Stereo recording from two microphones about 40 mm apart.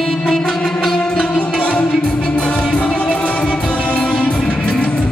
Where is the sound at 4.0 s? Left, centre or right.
Centre.